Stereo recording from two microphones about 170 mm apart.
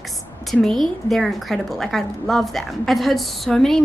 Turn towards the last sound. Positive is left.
turn(degrees=5)  # may be behind; listen again after turning